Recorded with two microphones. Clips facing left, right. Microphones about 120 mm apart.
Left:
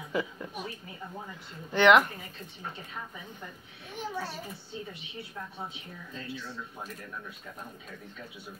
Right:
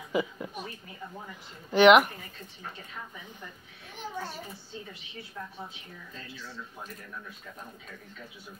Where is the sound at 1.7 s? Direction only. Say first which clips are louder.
Right 3 dB; 20° right (ahead or behind).